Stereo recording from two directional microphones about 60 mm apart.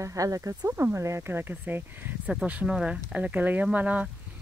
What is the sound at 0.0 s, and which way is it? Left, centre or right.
Speech, right.